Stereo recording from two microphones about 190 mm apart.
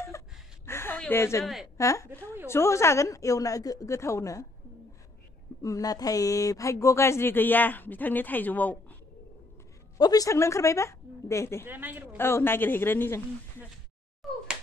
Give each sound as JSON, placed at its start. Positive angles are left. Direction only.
{"t": 0.7, "sound": "a sound", "side_deg": 10}
{"t": 1.4, "sound": "a woman's voice", "side_deg": 0}
{"t": 1.8, "sound": "speech", "side_deg": 15}
{"t": 5.6, "sound": "speech", "side_deg": 20}
{"t": 9.9, "sound": "speech", "side_deg": 20}
{"t": 11.6, "sound": "a woman's voice", "side_deg": -10}
{"t": 12.2, "sound": "speech", "side_deg": 15}
{"t": 14.2, "sound": "a sound", "side_deg": 0}